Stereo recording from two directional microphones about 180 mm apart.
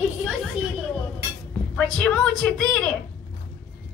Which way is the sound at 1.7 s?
5° left (ahead or behind).